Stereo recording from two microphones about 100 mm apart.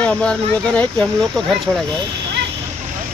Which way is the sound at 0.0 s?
10° left (ahead or behind).